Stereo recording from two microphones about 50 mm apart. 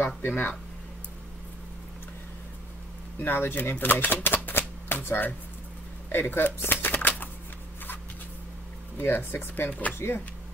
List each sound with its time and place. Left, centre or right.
0.0 s speech: left
3.2 s speech: left
6.0 s shuffling cards: left
8.9 s speech: left
9.7 s speech: left
9.9 s speech: left